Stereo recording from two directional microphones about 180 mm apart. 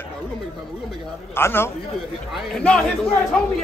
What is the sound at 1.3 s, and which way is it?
Speech, 15° left (ahead or behind).